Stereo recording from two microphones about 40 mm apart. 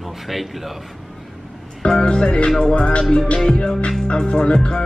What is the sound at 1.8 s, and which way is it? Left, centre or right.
Music, left.